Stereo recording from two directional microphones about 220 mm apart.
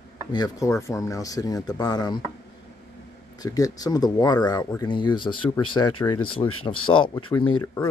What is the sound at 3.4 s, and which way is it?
Speech, 15° left (ahead or behind).